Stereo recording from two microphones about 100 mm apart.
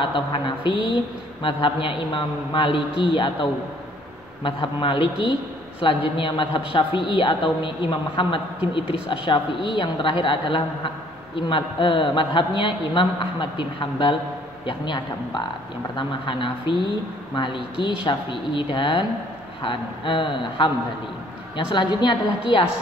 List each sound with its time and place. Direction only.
0.0 s a woman's voice: 55° left (ahead or behind)